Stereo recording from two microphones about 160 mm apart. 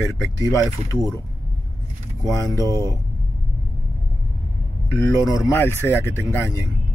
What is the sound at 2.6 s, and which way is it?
Speech, 20° right (ahead or behind).